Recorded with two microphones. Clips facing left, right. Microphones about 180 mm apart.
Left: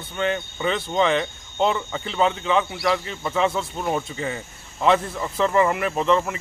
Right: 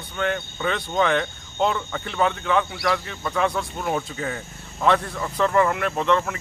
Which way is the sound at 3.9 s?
5° left (ahead or behind).